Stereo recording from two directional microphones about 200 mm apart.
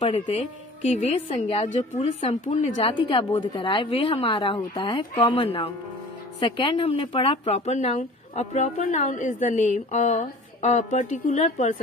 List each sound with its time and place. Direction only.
0.8 s a woman's voice: 35° left (ahead or behind)